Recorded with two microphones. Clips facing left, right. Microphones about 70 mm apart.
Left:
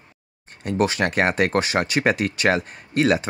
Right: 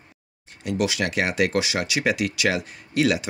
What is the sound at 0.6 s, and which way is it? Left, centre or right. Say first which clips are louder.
Speech: left 3 dB; left.